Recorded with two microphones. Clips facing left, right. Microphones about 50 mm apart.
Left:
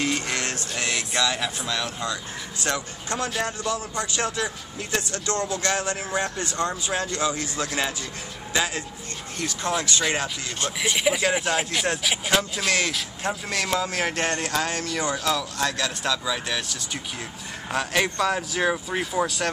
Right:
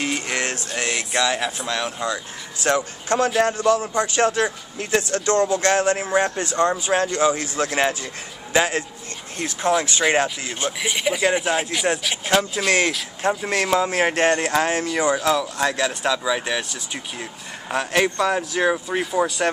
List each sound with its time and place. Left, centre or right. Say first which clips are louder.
0.0 s music: right 2 dB; centre
0.7 s speech: right 3 dB; right
2.6 s speech: right 7 dB; right
9.6 s speech: right 7 dB; centre
9.8 s speech: right 6 dB; right
10.8 s speech: right 1 dB; centre
12.6 s speech: right 4 dB; right; by 19.4 s centre